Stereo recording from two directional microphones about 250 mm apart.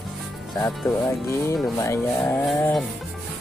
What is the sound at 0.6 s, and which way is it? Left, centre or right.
Music, centre.